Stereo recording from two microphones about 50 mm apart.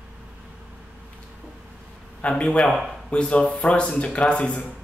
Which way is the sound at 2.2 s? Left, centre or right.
Left.